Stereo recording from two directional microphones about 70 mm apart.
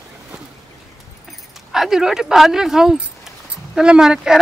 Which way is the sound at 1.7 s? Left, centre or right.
Centre.